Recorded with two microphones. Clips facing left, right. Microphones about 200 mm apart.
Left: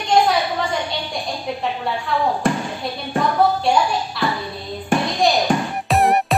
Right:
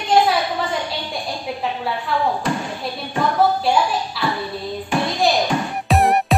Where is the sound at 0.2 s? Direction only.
Centre (ahead or behind).